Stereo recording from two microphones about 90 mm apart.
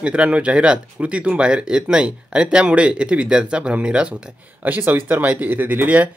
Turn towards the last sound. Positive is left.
turn(degrees=-20)  # may be behind; listen again after turning